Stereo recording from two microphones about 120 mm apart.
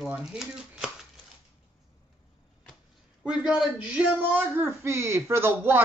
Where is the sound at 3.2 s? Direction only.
5° right (ahead or behind).